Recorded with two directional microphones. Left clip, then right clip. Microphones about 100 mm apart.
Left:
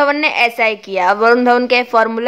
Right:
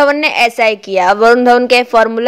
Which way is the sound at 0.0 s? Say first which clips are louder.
Right 3 dB; 30° right (ahead or behind).